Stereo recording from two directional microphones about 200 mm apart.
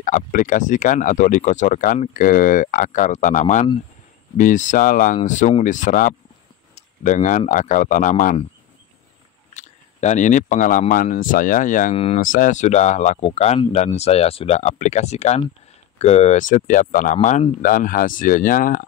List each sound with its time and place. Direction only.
0.0 s speech: 40° left (ahead or behind)
9.5 s speech: 35° left (ahead or behind)